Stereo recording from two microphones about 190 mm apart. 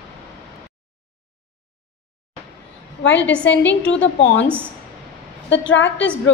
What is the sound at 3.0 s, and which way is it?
Speech, 65° left (ahead or behind).